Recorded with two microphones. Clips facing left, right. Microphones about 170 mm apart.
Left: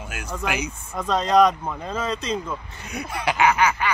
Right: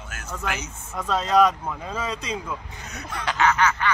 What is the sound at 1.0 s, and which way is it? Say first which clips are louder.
Speech: left 2 dB; 5° right (ahead or behind).